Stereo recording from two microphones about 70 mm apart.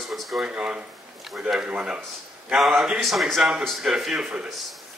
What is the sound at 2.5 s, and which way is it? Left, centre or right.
Speech, centre.